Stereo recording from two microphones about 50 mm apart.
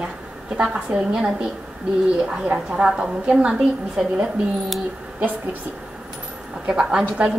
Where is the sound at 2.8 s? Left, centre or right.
Right.